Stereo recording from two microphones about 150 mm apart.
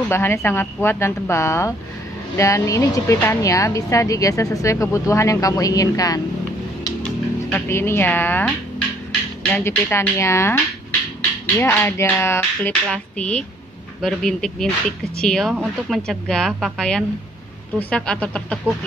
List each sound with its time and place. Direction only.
0.1 s speech: 15° left (ahead or behind)
7.5 s a woman's voice: 15° left (ahead or behind)